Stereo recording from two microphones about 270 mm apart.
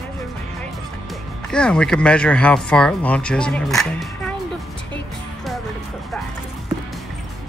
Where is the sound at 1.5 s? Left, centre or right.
Centre.